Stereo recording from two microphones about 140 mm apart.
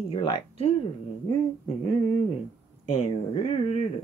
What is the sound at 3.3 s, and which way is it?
Speech, 45° left (ahead or behind).